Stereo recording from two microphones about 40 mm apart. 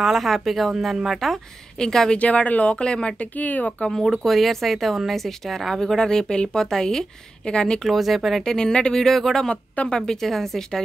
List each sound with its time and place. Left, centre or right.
0.0 s a woman's voice: centre
2.1 s speech: left
3.3 s speech: left
4.3 s a woman's voice: centre; by 7.8 s left
7.8 s speech: centre
8.5 s a woman's voice: centre
9.5 s speech: left
10.0 s a woman's voice: centre